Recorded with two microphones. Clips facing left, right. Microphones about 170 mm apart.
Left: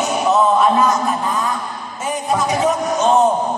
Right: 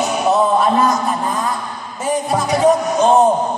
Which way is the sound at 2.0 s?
35° right (ahead or behind).